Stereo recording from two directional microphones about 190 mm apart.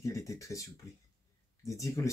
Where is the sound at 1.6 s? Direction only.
15° left (ahead or behind).